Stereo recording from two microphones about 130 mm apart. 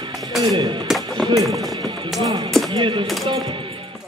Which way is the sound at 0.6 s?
35° right (ahead or behind).